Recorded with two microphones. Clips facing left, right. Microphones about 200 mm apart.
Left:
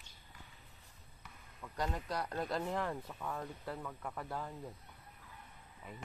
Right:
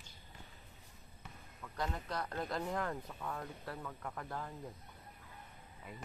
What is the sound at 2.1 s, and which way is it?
Speech, 10° left (ahead or behind).